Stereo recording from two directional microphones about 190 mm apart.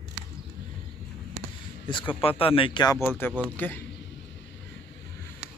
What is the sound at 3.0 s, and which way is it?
Speech, 10° left (ahead or behind).